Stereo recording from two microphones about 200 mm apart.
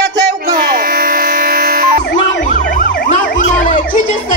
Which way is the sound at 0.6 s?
45° right (ahead or behind).